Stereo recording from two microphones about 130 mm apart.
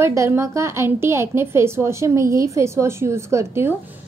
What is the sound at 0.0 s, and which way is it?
A woman's voice, 20° right (ahead or behind).